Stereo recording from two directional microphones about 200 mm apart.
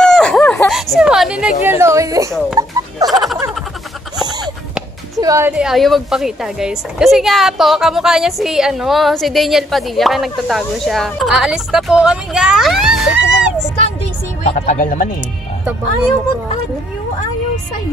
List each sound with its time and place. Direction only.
0.0 s a sound: 5° left (ahead or behind)
1.7 s a woman's voice: 15° right (ahead or behind)
2.6 s sheep: 15° right (ahead or behind)
3.1 s a sound: centre (ahead or behind)
5.2 s a woman's voice: 15° right (ahead or behind)
14.4 s speech: 35° left (ahead or behind)